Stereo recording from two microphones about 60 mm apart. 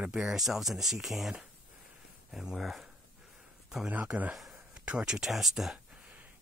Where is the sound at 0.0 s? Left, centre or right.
Centre.